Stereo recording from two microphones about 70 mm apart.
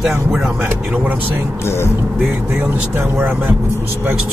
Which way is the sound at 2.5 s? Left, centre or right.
Right.